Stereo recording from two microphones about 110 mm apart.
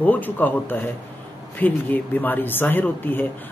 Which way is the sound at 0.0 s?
15° left (ahead or behind).